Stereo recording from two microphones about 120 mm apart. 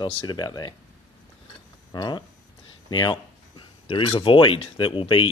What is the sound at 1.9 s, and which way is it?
Speech, 35° left (ahead or behind).